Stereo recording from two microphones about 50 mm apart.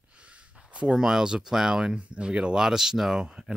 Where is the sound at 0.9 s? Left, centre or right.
Centre.